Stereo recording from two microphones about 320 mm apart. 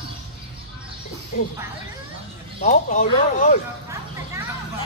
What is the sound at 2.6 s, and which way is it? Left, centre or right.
Speech, left.